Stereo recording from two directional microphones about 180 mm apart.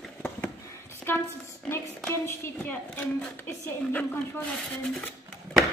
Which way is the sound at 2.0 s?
10° left (ahead or behind).